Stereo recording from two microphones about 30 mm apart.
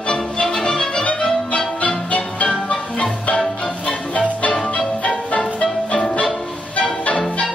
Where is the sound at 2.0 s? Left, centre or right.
Left.